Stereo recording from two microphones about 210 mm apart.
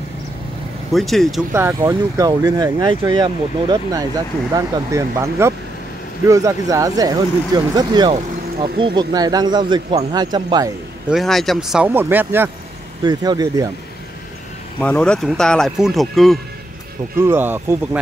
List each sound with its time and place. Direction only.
0.9 s speech: centre (ahead or behind)
1.5 s speech: 10° right (ahead or behind)
11.1 s speech: centre (ahead or behind)
13.0 s speech: 20° right (ahead or behind)
14.8 s speech: 5° left (ahead or behind)
17.2 s speech: 10° right (ahead or behind)